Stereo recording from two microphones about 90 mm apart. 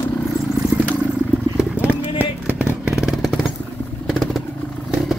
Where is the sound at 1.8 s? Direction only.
15° right (ahead or behind); by 4.4 s centre (ahead or behind).